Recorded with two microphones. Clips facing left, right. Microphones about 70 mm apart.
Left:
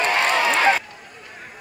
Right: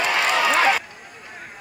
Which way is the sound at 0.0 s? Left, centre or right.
Left.